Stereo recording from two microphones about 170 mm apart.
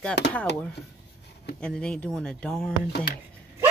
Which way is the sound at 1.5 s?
5° left (ahead or behind).